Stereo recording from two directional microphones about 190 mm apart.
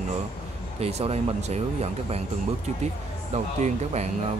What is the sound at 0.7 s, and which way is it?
Speech, 30° right (ahead or behind).